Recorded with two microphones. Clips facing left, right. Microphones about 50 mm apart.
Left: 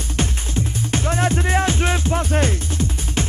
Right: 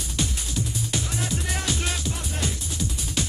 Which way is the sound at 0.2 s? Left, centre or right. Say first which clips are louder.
Left 5 dB; left.